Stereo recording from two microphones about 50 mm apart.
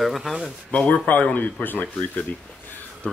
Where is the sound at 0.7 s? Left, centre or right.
Left.